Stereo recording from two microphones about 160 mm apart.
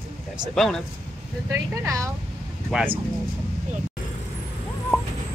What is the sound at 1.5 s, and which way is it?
Speech, 20° right (ahead or behind).